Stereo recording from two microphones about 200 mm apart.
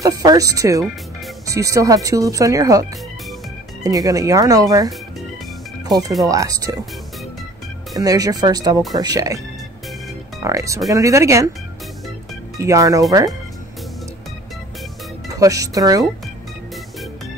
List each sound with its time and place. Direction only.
0.0 s speech: 20° right (ahead or behind)
7.9 s speech: 15° right (ahead or behind)
10.4 s speech: 15° right (ahead or behind)
12.5 s speech: 15° right (ahead or behind)
15.2 s speech: 15° right (ahead or behind)